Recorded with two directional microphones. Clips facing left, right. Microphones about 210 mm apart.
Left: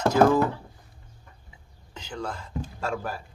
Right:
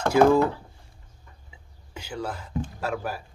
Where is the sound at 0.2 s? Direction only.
15° right (ahead or behind).